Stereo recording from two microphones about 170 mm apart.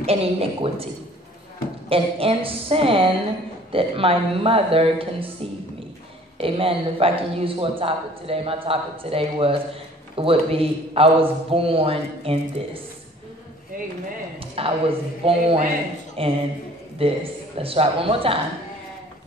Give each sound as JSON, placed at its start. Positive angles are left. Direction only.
{"t": 0.0, "sound": "a man's voice", "side_deg": -35}
{"t": 1.9, "sound": "a man's voice", "side_deg": -35}
{"t": 6.3, "sound": "a man's voice", "side_deg": -35}
{"t": 14.4, "sound": "a man's voice", "side_deg": -35}